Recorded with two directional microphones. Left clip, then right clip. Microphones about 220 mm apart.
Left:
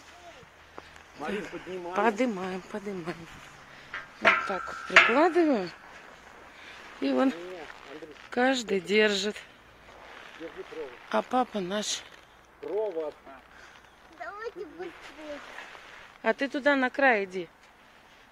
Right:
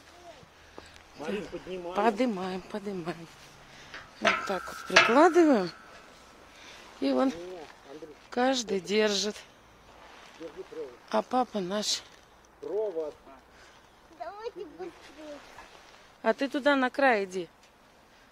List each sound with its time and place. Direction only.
1.1 s speech: 5° right (ahead or behind)
4.4 s speech: 15° right (ahead or behind)
6.6 s a sound: 5° right (ahead or behind)
8.3 s speech: centre (ahead or behind)
11.1 s speech: centre (ahead or behind)
14.2 s a sound: 20° left (ahead or behind)
16.2 s speech: 10° right (ahead or behind)